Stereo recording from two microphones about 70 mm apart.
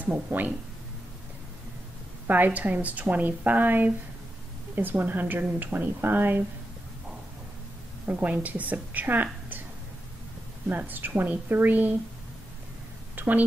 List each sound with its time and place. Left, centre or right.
0.0 s a woman's voice: right
2.2 s a woman's voice: right
8.1 s a woman's voice: right
10.7 s a woman's voice: right
13.1 s a woman's voice: right